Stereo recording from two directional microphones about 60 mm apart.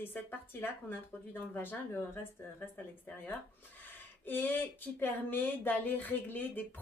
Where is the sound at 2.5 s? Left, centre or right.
Left.